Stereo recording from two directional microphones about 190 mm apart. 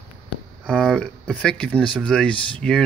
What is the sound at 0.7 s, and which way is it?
Speech, 5° left (ahead or behind).